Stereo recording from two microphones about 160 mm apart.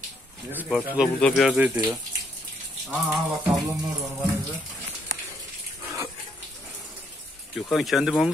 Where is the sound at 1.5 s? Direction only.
10° right (ahead or behind).